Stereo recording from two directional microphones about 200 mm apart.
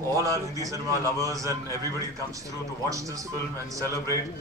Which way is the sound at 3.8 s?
15° left (ahead or behind).